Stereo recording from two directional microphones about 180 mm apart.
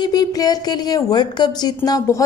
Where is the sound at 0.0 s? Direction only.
20° left (ahead or behind).